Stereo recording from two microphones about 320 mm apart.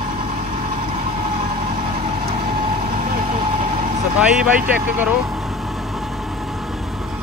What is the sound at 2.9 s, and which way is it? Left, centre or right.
Vehicle, right.